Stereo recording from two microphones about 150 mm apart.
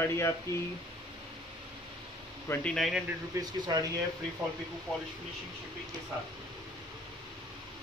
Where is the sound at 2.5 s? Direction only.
5° left (ahead or behind).